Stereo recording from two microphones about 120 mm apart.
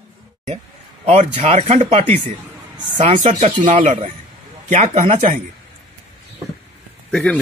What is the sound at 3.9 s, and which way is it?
A man's voice, 75° right (ahead or behind).